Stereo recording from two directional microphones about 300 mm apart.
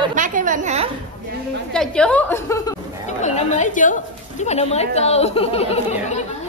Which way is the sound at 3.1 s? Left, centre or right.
Left.